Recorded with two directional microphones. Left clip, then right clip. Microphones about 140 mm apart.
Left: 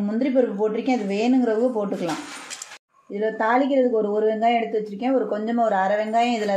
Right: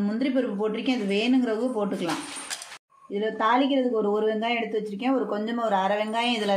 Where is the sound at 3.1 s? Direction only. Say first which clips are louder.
Left 2 dB; 15° left (ahead or behind).